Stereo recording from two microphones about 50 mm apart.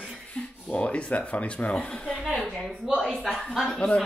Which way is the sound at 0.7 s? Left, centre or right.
Left.